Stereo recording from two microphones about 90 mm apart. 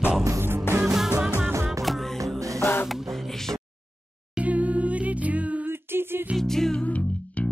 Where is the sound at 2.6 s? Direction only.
25° left (ahead or behind).